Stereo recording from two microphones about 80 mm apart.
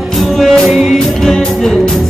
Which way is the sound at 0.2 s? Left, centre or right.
Centre.